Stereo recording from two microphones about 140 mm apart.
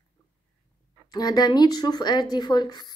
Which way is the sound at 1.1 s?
30° left (ahead or behind).